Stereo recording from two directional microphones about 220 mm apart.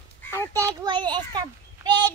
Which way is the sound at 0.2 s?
10° left (ahead or behind).